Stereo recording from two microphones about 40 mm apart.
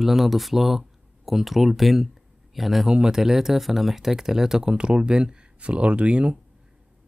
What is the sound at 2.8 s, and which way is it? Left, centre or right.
Speech, centre.